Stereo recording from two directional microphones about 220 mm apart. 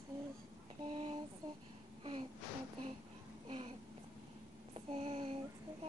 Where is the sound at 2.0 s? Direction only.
20° right (ahead or behind).